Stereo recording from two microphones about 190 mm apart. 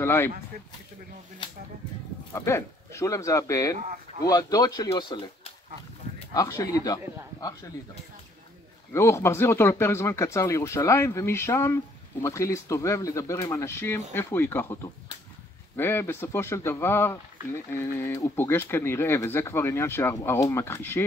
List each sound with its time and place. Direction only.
0.0 s speech: 15° left (ahead or behind)
2.3 s speech: 15° left (ahead or behind)
8.9 s speech: 15° left (ahead or behind)